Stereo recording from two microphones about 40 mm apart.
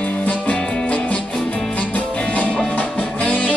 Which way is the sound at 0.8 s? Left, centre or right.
Left.